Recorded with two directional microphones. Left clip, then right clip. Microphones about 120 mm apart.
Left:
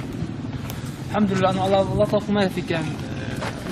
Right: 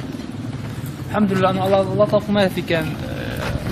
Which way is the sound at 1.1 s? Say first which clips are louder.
Right 3 dB; 10° right (ahead or behind).